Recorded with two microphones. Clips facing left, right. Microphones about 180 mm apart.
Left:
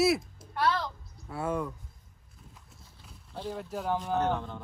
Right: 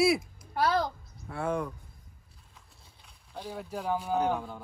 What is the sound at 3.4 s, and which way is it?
Speech, 5° right (ahead or behind).